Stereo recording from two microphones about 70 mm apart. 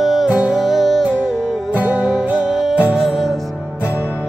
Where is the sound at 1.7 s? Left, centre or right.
Right.